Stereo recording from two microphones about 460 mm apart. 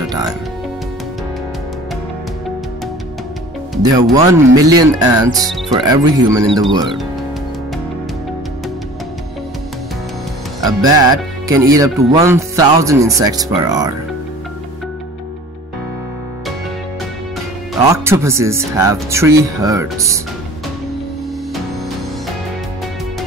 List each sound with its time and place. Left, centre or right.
3.7 s speech: centre
10.6 s speech: centre
17.8 s speech: centre